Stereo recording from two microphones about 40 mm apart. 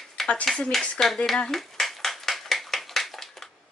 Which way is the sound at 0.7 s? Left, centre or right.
Centre.